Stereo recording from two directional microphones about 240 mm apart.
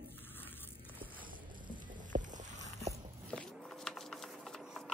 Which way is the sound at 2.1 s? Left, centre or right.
Centre.